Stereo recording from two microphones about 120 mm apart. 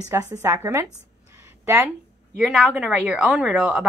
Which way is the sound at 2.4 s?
5° right (ahead or behind).